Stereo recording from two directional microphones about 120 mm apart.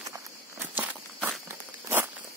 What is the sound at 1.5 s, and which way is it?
Crunch, 20° right (ahead or behind).